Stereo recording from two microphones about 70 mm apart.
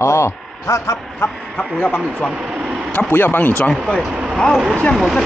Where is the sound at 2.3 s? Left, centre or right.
Centre.